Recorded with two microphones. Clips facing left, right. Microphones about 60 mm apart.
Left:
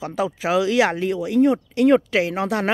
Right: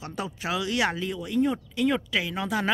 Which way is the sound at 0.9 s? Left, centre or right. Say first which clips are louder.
Left 8 dB; left.